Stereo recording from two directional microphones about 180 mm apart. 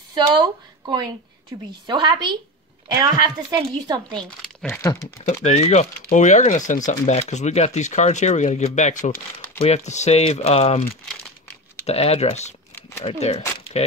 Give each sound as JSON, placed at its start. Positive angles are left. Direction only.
{"t": 0.1, "sound": "a woman's voice", "side_deg": -25}
{"t": 4.2, "sound": "speech", "side_deg": 5}
{"t": 5.2, "sound": "speech", "side_deg": 40}
{"t": 11.8, "sound": "speech", "side_deg": 35}